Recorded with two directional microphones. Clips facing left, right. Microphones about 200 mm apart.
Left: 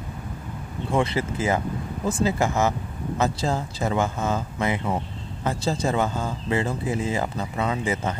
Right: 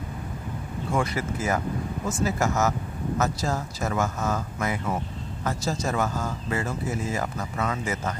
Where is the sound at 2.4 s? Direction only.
30° left (ahead or behind).